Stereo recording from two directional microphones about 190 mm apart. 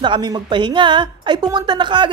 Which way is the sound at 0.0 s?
25° right (ahead or behind).